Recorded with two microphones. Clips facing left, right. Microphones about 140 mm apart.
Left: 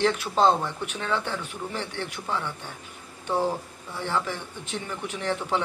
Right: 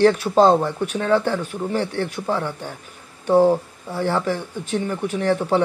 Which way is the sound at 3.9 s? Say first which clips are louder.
Right 7 dB; 40° right (ahead or behind).